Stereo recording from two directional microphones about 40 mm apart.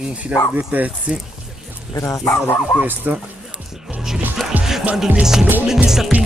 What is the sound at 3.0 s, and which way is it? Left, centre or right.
Speech, right.